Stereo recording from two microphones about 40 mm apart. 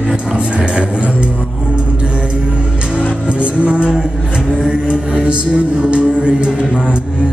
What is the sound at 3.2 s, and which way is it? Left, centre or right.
Music, right.